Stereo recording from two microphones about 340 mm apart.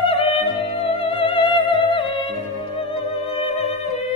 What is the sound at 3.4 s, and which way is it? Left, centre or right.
Music, centre.